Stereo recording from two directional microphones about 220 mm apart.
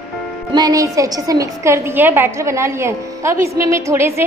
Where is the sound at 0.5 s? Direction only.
15° right (ahead or behind).